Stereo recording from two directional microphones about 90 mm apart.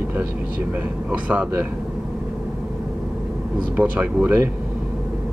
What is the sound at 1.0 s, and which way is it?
Speech, 15° right (ahead or behind).